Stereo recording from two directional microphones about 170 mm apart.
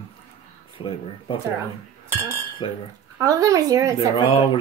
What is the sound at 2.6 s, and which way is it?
Speech, 30° left (ahead or behind).